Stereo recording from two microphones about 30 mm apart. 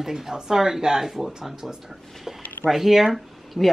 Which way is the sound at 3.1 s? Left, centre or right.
Centre.